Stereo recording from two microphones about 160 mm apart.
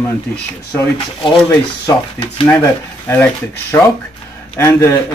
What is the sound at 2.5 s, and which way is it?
Speech, 15° left (ahead or behind).